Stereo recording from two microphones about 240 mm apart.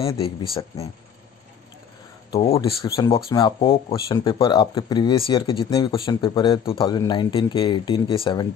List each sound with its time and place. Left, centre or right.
0.0 s speech: left
2.3 s speech: left